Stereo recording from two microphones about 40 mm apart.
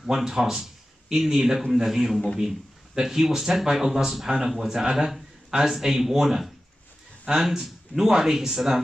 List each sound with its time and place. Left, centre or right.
0.0 s speech: centre
2.3 s a sound: centre
3.0 s speech: centre